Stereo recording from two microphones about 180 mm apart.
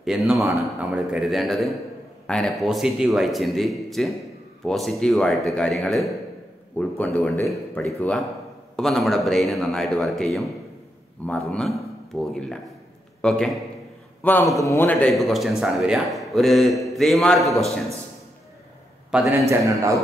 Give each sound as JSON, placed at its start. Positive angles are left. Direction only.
{"t": 0.0, "sound": "a man's voice", "side_deg": -5}
{"t": 19.0, "sound": "a man's voice", "side_deg": -5}
{"t": 19.5, "sound": "a man's voice", "side_deg": -20}